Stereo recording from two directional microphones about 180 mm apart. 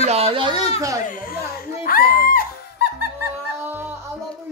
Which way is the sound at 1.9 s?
55° left (ahead or behind).